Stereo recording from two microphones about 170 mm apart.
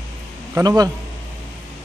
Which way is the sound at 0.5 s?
20° right (ahead or behind).